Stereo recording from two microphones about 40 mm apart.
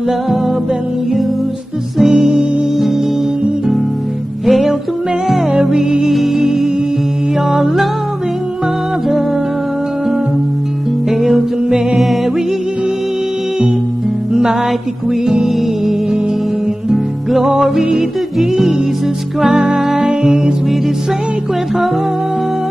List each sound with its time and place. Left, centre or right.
2.0 s music: centre
4.5 s music: centre
11.1 s music: centre
14.3 s music: centre